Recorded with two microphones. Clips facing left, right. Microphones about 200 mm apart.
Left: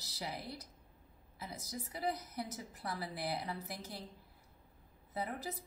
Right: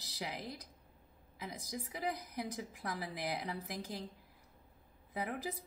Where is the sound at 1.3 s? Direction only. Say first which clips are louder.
Right 2 dB; 15° right (ahead or behind).